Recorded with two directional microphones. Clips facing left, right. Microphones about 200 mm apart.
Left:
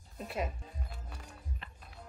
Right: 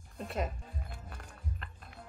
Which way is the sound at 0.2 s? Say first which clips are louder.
Right 1 dB; centre (ahead or behind).